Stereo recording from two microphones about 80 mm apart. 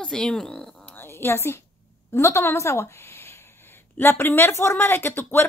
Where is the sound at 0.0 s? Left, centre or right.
Centre.